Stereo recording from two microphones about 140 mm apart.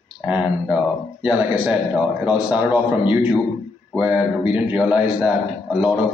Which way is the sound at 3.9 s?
5° right (ahead or behind).